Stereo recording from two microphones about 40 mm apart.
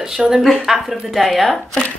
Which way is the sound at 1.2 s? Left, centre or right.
Centre.